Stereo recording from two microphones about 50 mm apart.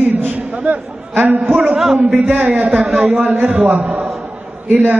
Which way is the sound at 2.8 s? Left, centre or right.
Right.